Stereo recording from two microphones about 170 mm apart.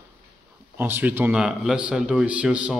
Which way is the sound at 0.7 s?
10° right (ahead or behind).